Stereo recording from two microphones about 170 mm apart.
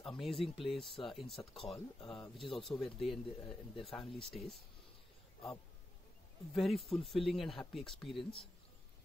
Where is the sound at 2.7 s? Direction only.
Centre (ahead or behind).